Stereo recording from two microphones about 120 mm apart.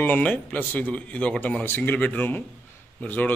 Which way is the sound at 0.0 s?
15° left (ahead or behind).